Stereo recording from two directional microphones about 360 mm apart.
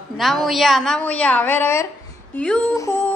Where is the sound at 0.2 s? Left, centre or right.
Centre.